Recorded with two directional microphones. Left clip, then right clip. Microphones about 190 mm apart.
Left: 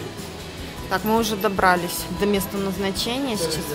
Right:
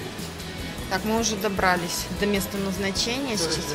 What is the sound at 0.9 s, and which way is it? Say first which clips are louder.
A woman's voice: left 4 dB; 20° left (ahead or behind).